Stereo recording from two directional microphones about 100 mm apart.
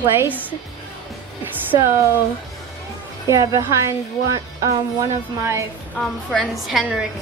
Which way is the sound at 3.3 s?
35° right (ahead or behind).